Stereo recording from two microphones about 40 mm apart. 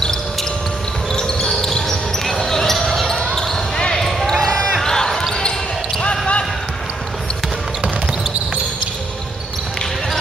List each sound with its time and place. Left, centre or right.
0.0 s basketball bounce: centre
3.7 s basketball bounce: centre
4.4 s a sound: centre
4.8 s basketball bounce: centre
5.9 s basketball bounce: left